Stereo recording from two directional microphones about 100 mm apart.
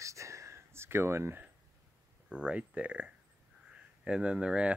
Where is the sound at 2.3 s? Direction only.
10° right (ahead or behind).